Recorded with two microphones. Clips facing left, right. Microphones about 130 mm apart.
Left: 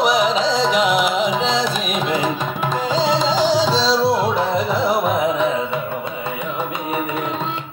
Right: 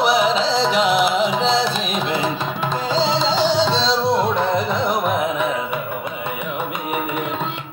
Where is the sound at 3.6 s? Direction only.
5° left (ahead or behind).